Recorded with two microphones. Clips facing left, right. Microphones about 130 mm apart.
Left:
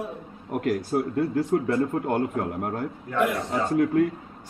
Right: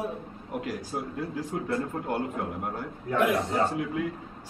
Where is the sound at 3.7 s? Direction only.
50° left (ahead or behind).